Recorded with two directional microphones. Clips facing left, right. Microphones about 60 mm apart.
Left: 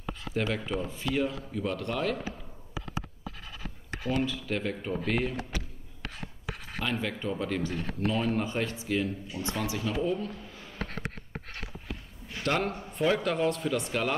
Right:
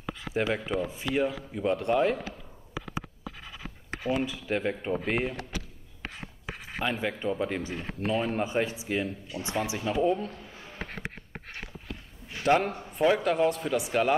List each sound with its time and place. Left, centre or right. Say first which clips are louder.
0.3 s speech: right 2 dB; right
4.1 s speech: right 1 dB; centre
6.0 s a sound: even; right
6.8 s speech: right 2 dB; centre
10.6 s a sound: left 1 dB; right
12.3 s a man's voice: right 5 dB; centre